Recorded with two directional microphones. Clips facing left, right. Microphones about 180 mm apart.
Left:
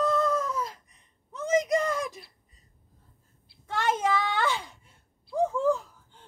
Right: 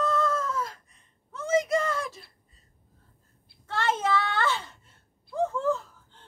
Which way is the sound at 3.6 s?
15° left (ahead or behind).